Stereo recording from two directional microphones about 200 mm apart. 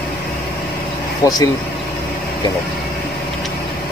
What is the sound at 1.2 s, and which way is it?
Speech, 20° left (ahead or behind).